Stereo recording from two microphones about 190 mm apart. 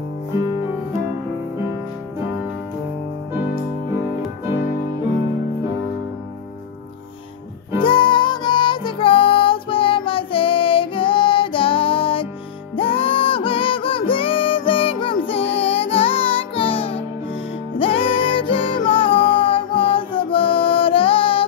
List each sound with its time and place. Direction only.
7.8 s music: 25° left (ahead or behind)